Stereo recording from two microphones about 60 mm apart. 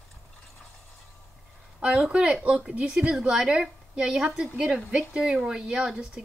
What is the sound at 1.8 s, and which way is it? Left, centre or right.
A woman's voice, centre.